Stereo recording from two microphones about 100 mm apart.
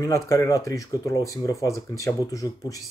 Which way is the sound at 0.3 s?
35° left (ahead or behind).